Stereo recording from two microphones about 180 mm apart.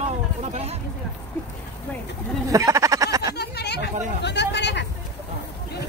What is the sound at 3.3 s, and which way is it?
Chatter, 65° left (ahead or behind).